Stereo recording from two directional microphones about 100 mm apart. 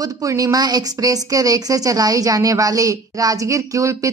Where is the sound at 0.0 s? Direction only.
35° right (ahead or behind).